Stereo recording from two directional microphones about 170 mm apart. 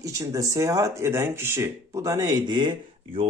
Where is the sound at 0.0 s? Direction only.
20° right (ahead or behind).